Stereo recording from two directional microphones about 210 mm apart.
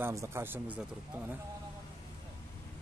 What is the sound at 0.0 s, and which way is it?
Speech, 15° right (ahead or behind).